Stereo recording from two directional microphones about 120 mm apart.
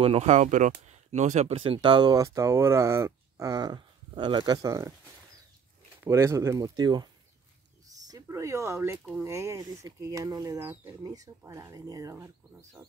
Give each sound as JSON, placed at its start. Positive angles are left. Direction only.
{"t": 0.0, "sound": "speech", "side_deg": -60}
{"t": 1.5, "sound": "speech", "side_deg": -50}
{"t": 6.0, "sound": "speech", "side_deg": -25}
{"t": 8.1, "sound": "speech", "side_deg": -25}
{"t": 10.6, "sound": "speech", "side_deg": -20}